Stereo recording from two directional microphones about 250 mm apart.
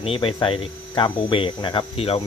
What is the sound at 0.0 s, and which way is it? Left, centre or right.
Speech, left.